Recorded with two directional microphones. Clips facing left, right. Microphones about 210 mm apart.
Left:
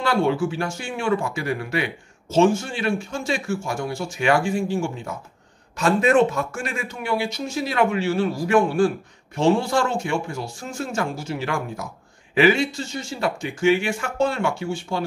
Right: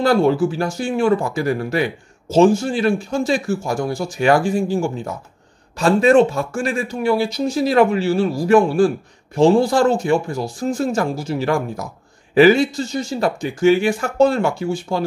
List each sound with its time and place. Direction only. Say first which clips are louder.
0.0 s speech: right 6 dB; 40° right (ahead or behind)